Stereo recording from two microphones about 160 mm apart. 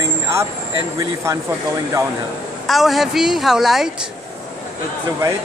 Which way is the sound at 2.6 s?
Centre (ahead or behind).